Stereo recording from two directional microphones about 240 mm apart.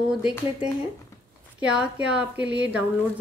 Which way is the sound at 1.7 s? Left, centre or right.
Centre.